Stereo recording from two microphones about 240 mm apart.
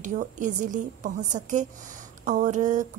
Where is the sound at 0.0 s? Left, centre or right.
Right.